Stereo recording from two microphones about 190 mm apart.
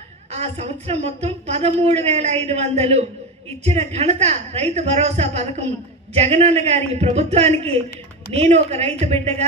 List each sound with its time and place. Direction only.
0.3 s a woman's voice: 35° right (ahead or behind)